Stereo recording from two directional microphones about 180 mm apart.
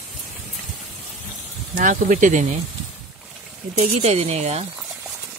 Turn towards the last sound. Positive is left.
turn(degrees=-35)  # may be behind; listen again after turning